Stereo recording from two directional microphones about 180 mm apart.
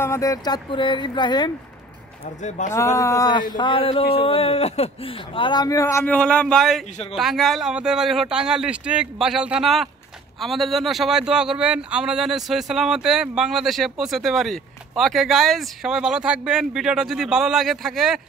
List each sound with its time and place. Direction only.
0.0 s speech: 15° left (ahead or behind)
2.6 s speech: 45° left (ahead or behind)
3.0 s speech: 20° left (ahead or behind); by 18.2 s centre (ahead or behind)